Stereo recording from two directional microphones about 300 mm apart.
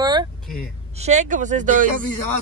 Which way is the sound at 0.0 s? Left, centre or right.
Centre.